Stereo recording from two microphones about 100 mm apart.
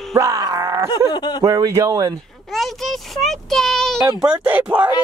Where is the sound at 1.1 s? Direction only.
45° left (ahead or behind).